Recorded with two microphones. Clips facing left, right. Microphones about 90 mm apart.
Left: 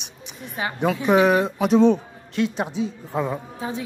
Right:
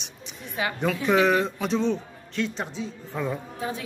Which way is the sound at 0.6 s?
35° left (ahead or behind).